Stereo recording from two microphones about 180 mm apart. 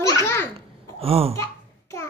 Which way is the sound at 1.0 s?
30° right (ahead or behind).